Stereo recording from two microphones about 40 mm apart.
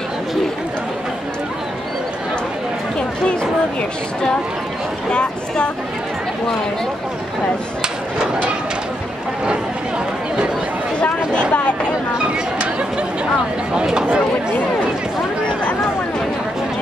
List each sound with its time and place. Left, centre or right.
5.1 s speech: left
11.0 s a sound: left
13.7 s speech: right